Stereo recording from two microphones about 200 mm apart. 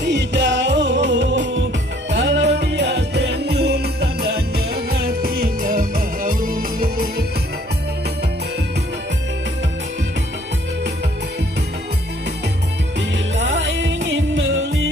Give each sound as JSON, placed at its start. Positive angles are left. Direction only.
{"t": 0.0, "sound": "music", "side_deg": -60}
{"t": 13.4, "sound": "music", "side_deg": -70}